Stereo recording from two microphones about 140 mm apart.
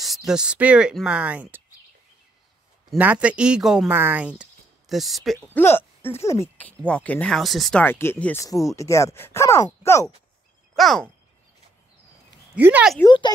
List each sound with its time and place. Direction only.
0.0 s speech: centre (ahead or behind)
3.0 s speech: 10° right (ahead or behind)
3.9 s speech: 15° right (ahead or behind)
5.5 s speech: 15° left (ahead or behind)
6.8 s speech: 10° left (ahead or behind)
7.8 s speech: 15° left (ahead or behind)
10.8 s speech: centre (ahead or behind)
12.5 s speech: 10° right (ahead or behind)